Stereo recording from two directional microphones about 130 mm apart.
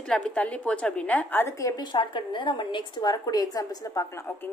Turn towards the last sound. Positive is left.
turn(degrees=20)  # may be behind; listen again after turning